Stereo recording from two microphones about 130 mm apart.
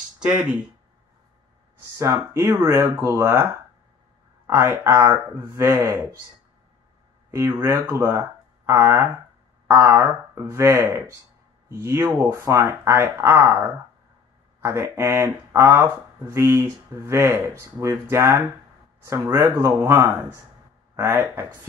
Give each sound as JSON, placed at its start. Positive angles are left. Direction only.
{"t": 0.4, "sound": "speech", "side_deg": -5}
{"t": 2.0, "sound": "speech", "side_deg": -20}
{"t": 4.6, "sound": "speech", "side_deg": -15}
{"t": 7.2, "sound": "speech", "side_deg": -20}
{"t": 14.6, "sound": "speech", "side_deg": -20}